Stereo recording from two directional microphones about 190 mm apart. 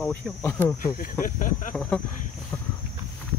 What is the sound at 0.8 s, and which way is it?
Speech, 45° left (ahead or behind).